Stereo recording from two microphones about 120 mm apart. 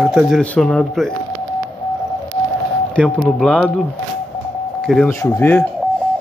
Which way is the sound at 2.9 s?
5° left (ahead or behind).